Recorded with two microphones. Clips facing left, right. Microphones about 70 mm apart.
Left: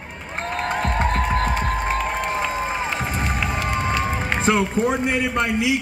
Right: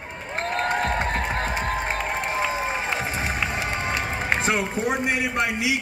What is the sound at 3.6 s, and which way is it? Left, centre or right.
Run, centre.